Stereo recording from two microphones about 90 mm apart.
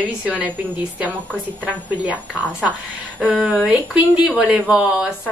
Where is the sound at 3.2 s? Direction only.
10° right (ahead or behind).